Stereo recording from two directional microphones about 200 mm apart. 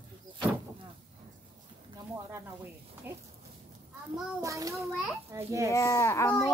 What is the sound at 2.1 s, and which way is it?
A child's voice, 15° right (ahead or behind).